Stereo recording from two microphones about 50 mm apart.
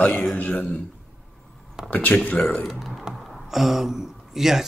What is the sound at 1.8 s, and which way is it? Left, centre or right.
Speech, left.